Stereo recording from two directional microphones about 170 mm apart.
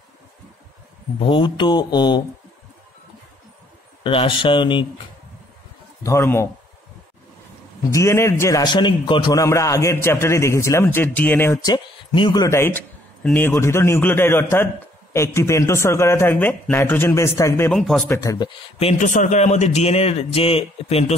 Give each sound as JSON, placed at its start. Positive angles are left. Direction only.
{"t": 1.2, "sound": "speech", "side_deg": 30}
{"t": 4.0, "sound": "speech", "side_deg": 30}
{"t": 6.0, "sound": "a man's voice", "side_deg": 15}
{"t": 7.9, "sound": "a man's voice", "side_deg": 15}
{"t": 17.6, "sound": "speech", "side_deg": 0}
{"t": 18.1, "sound": "speech", "side_deg": 20}
{"t": 18.8, "sound": "a man's voice", "side_deg": 40}